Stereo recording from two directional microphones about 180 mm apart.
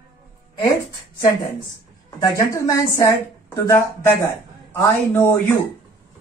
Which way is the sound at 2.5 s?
15° left (ahead or behind).